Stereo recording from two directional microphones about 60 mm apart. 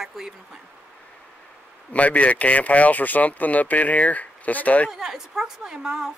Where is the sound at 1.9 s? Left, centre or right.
Left.